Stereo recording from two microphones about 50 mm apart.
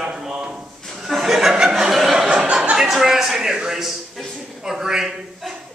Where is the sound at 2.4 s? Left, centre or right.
Centre.